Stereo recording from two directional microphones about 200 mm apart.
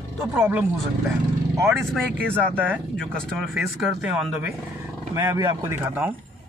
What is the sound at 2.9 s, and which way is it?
Speech, 5° left (ahead or behind).